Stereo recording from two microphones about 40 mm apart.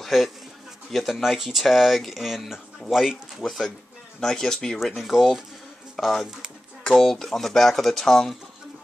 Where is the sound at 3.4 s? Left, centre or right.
Centre.